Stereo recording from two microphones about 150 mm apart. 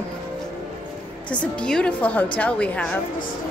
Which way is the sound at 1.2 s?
5° left (ahead or behind).